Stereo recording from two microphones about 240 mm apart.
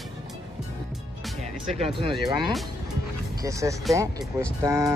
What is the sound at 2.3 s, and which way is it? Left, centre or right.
Speech, centre.